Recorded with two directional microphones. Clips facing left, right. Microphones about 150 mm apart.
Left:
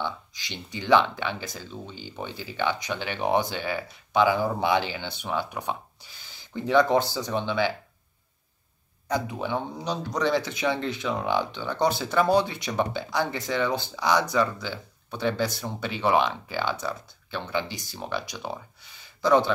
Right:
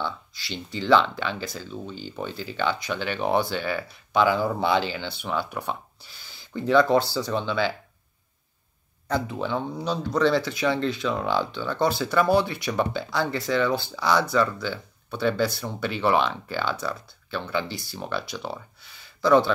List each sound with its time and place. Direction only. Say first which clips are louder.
0.0 s speech: right 1 dB; 15° left (ahead or behind)
9.0 s speech: right 1 dB; 15° left (ahead or behind)